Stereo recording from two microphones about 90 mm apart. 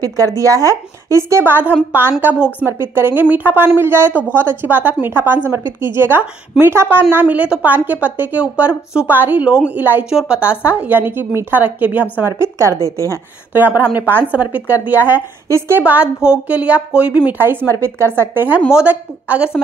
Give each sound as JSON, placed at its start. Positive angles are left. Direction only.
{"t": 0.0, "sound": "a woman's voice", "side_deg": -40}
{"t": 12.3, "sound": "speech", "side_deg": -30}
{"t": 13.5, "sound": "a woman's voice", "side_deg": -20}
{"t": 15.4, "sound": "speech", "side_deg": -30}
{"t": 15.8, "sound": "a woman's voice", "side_deg": -15}